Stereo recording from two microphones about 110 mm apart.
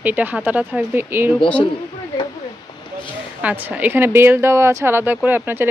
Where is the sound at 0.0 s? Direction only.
15° right (ahead or behind).